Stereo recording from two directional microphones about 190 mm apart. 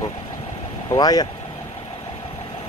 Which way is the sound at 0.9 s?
20° left (ahead or behind).